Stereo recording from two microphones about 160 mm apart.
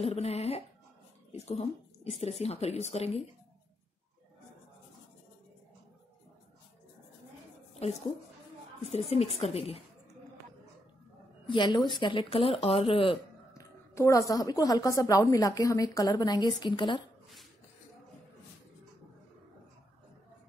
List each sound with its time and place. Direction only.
0.0 s speech: 40° left (ahead or behind)
7.8 s a woman's voice: 40° left (ahead or behind)
11.4 s a woman's voice: 30° left (ahead or behind)
13.6 s a woman's voice: 20° left (ahead or behind)